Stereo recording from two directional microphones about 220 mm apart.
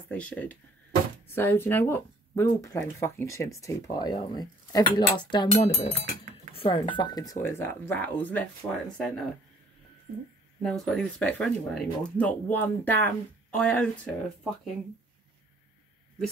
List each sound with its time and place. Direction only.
0.1 s speech: 5° left (ahead or behind)
10.6 s speech: centre (ahead or behind)